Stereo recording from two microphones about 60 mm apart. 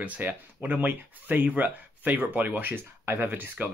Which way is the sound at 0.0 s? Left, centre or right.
Right.